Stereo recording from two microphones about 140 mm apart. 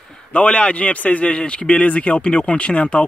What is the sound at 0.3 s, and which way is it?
A man's voice, 10° left (ahead or behind).